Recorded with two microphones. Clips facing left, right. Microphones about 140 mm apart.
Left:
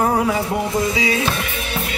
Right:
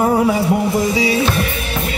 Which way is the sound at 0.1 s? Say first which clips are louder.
Right 4 dB; 35° right (ahead or behind).